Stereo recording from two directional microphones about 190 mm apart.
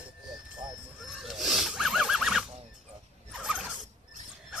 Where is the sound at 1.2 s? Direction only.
Centre (ahead or behind).